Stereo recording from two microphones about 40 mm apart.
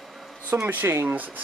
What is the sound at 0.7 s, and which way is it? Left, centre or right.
Speech, right.